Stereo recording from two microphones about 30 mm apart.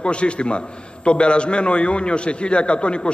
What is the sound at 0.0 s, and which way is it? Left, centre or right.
A man's voice, left.